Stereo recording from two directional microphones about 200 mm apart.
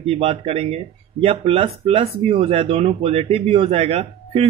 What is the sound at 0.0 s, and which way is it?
Speech, 30° right (ahead or behind).